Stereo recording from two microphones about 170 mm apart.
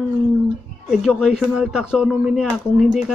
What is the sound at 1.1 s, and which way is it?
Speech, 5° right (ahead or behind).